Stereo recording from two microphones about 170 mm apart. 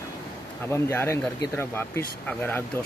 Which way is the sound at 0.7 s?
15° left (ahead or behind).